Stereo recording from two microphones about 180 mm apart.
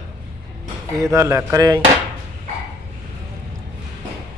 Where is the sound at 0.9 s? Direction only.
15° right (ahead or behind).